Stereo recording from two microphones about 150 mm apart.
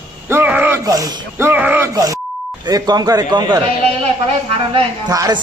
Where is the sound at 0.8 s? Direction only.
25° right (ahead or behind).